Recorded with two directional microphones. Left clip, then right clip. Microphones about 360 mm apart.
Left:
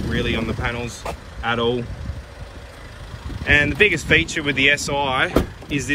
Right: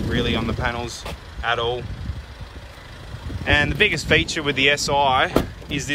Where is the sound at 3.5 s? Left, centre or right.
Centre.